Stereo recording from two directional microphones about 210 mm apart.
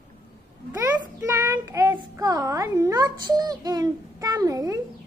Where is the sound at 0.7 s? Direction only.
15° right (ahead or behind).